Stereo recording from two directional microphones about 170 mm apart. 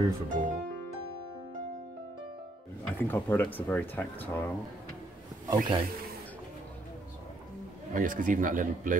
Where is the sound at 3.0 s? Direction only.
10° left (ahead or behind).